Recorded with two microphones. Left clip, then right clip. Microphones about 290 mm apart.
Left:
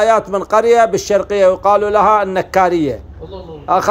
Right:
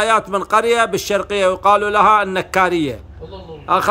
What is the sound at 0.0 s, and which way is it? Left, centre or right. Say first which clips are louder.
A man's voice: left 3 dB; centre.